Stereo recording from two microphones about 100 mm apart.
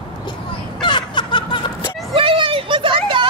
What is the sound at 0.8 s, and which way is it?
Snicker, 50° left (ahead or behind).